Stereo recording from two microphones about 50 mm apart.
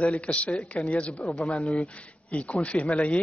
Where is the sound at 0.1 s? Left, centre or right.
Left.